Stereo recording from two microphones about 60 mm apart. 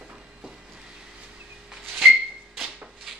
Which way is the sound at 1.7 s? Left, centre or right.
Centre.